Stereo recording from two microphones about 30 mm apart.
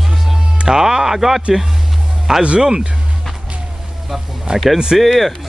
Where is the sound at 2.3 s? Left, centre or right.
Centre.